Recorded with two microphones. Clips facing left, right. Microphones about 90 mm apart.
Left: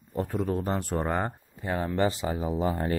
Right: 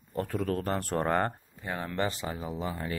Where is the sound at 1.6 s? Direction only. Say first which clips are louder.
Left 5 dB; 20° left (ahead or behind); by 2.9 s 35° left (ahead or behind).